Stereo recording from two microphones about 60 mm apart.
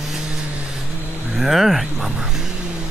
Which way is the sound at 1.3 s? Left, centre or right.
Centre.